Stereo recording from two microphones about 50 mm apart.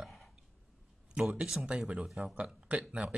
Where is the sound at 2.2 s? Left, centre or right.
Right.